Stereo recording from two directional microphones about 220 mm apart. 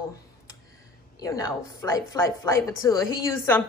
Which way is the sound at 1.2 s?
15° left (ahead or behind).